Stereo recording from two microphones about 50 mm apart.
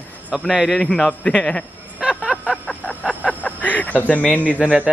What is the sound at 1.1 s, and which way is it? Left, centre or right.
Speech, left.